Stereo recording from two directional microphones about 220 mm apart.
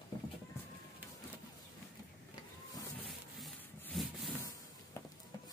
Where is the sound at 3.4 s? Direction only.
Centre (ahead or behind).